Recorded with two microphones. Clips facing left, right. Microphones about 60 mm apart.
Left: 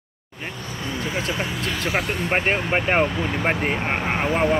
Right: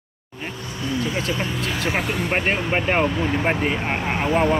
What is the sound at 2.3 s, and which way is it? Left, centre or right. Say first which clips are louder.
Vehicle: left 1 dB; centre.